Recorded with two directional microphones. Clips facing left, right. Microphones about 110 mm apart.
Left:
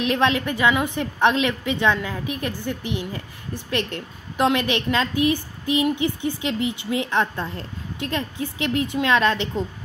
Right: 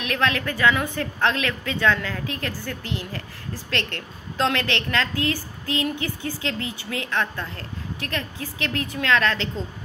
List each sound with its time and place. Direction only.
0.0 s a woman's voice: 25° left (ahead or behind)